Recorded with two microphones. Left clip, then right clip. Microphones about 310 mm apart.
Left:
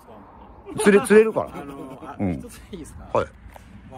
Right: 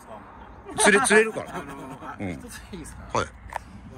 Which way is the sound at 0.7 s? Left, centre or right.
Centre.